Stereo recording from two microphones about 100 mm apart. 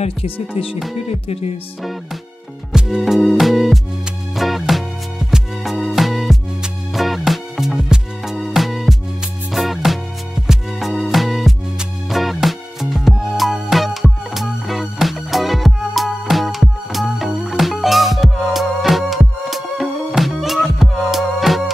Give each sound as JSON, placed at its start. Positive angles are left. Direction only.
{"t": 0.0, "sound": "speech", "side_deg": 70}
{"t": 1.0, "sound": "music", "side_deg": 90}
{"t": 2.7, "sound": "music", "side_deg": -5}